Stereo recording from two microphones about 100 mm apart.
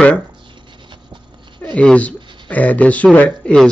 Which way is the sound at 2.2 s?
50° right (ahead or behind).